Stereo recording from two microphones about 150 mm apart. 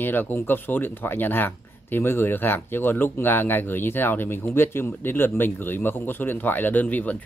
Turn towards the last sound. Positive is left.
turn(degrees=10)  # may be behind; listen again after turning